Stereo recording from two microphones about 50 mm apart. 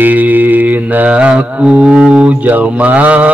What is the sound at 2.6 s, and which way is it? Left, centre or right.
Mantra, right.